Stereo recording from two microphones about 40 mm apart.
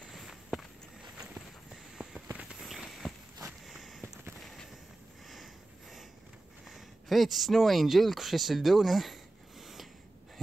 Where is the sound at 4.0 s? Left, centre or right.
Right.